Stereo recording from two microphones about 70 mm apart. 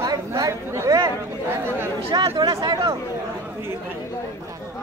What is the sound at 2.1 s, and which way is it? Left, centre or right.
Speech, right.